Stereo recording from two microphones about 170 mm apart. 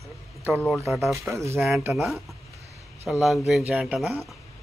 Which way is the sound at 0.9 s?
Centre (ahead or behind).